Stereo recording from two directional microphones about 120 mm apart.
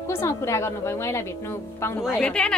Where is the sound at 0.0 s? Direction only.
20° left (ahead or behind).